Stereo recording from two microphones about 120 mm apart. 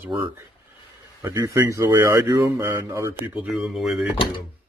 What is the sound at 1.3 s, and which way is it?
Speech, 30° right (ahead or behind).